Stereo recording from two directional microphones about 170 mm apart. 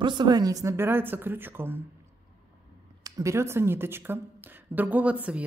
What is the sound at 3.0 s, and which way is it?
Speech, 15° right (ahead or behind).